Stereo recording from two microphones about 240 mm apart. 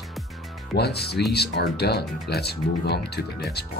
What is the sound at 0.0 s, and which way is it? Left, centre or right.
Music, centre.